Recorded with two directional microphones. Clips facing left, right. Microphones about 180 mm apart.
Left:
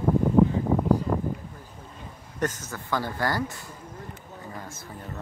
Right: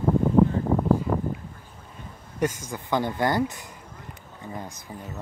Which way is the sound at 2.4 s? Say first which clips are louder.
Right 3 dB; 15° right (ahead or behind).